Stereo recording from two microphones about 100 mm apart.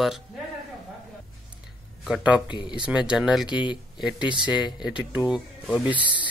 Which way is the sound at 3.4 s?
50° left (ahead or behind).